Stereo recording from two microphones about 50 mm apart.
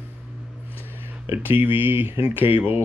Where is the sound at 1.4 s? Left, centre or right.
Right.